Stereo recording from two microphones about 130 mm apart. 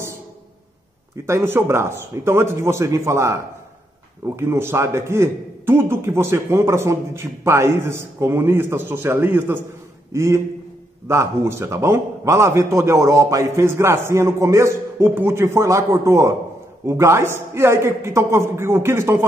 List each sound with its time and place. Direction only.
1.2 s a man's voice: 20° right (ahead or behind)
4.4 s a man's voice: 20° right (ahead or behind)